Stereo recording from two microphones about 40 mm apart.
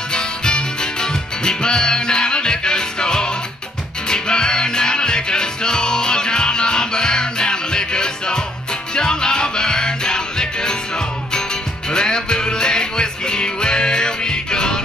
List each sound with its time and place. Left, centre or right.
0.1 s music: left
11.9 s music: centre